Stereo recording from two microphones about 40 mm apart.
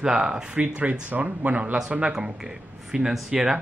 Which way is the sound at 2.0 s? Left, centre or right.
Centre.